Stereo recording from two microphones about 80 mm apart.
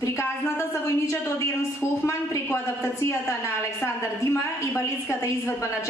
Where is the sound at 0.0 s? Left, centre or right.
Left.